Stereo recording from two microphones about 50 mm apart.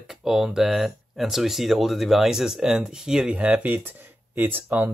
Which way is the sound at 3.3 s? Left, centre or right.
Right.